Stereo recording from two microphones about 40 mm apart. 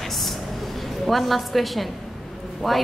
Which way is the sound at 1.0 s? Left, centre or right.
Centre.